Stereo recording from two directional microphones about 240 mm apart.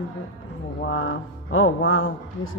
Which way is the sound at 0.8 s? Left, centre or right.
Left.